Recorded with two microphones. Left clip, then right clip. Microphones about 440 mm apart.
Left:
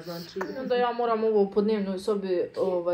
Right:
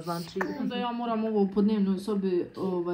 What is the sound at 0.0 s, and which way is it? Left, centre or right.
Speech, right.